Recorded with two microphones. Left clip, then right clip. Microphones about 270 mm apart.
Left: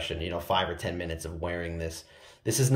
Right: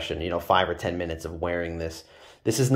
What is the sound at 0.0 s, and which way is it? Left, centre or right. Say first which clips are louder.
Speech: right 4 dB; centre.